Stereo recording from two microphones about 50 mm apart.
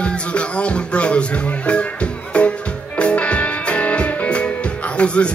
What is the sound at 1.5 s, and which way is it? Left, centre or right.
Music, left.